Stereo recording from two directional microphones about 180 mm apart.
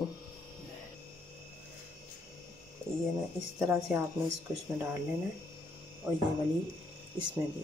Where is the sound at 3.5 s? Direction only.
5° right (ahead or behind).